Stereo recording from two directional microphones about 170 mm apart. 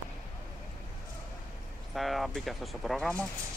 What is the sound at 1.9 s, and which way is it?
Speech, centre (ahead or behind).